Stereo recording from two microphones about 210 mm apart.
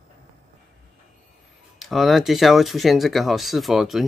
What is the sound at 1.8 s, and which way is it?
Speech, centre (ahead or behind).